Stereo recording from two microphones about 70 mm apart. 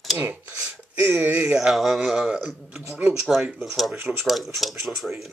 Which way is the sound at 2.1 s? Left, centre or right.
Centre.